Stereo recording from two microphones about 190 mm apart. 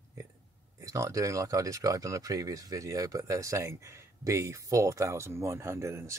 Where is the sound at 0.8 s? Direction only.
15° right (ahead or behind).